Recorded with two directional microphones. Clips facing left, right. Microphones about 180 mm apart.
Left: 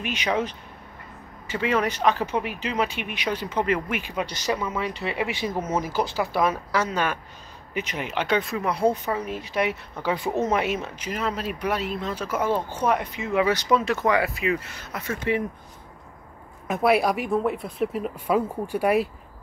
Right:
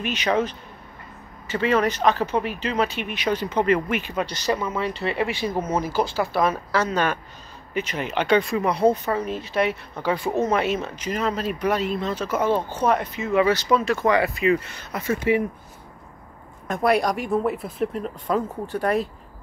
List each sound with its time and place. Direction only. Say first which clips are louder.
0.0 s speech: right 3 dB; 10° left (ahead or behind)
14.0 s speech: right 3 dB; 5° left (ahead or behind)
16.6 s speech: even; 5° left (ahead or behind)